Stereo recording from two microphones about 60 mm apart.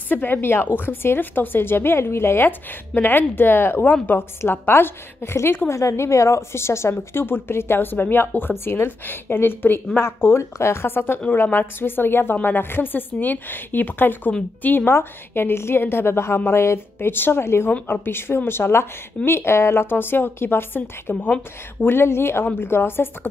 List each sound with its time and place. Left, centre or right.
0.1 s a woman's voice: left
4.4 s a woman's voice: left
5.7 s a woman's voice: left
21.8 s a woman's voice: left